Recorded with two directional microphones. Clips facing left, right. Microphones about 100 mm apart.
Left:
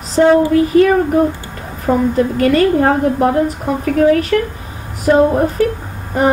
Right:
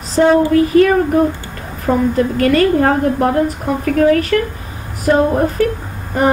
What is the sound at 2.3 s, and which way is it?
Speech, 20° left (ahead or behind).